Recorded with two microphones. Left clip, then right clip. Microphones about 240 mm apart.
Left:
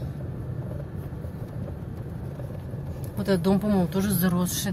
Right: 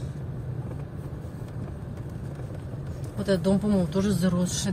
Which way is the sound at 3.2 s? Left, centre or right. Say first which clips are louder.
Even; centre.